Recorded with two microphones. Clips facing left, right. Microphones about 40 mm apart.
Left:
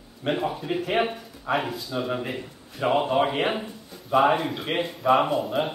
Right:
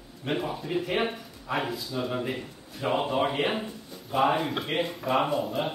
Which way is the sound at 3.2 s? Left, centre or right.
Centre.